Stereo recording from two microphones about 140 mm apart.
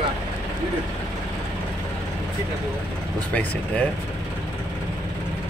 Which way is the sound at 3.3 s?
10° left (ahead or behind).